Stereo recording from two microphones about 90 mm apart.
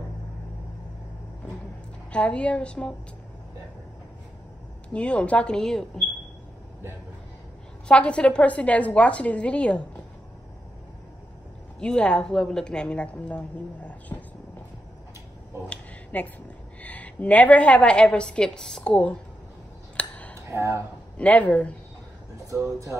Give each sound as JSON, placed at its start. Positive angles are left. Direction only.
{"t": 2.1, "sound": "a woman's voice", "side_deg": 15}
{"t": 4.8, "sound": "a woman's voice", "side_deg": 15}
{"t": 7.9, "sound": "a woman's voice", "side_deg": 15}
{"t": 11.8, "sound": "a woman's voice", "side_deg": 10}
{"t": 15.7, "sound": "a sound", "side_deg": 15}
{"t": 16.8, "sound": "a woman's voice", "side_deg": 15}
{"t": 20.0, "sound": "a sound", "side_deg": 15}
{"t": 20.5, "sound": "speech", "side_deg": -30}
{"t": 21.2, "sound": "a woman's voice", "side_deg": 15}
{"t": 22.7, "sound": "music", "side_deg": -35}